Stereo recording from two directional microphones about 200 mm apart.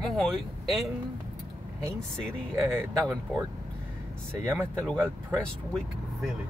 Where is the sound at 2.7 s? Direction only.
Centre (ahead or behind).